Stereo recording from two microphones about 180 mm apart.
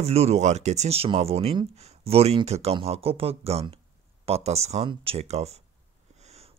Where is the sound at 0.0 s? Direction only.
35° right (ahead or behind).